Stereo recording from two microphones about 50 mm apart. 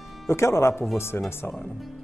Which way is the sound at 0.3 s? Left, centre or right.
Left.